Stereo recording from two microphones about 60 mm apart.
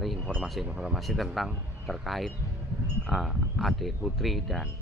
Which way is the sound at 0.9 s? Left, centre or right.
Centre.